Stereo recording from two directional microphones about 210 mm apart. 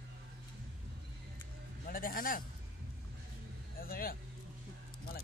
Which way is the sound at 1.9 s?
40° left (ahead or behind).